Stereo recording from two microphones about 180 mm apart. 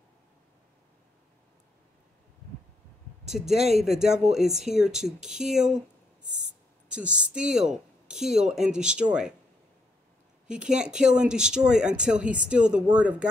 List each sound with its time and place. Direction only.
3.3 s speech: centre (ahead or behind)
6.2 s owl: 45° right (ahead or behind)
6.9 s speech: 5° right (ahead or behind)
10.5 s speech: 5° right (ahead or behind)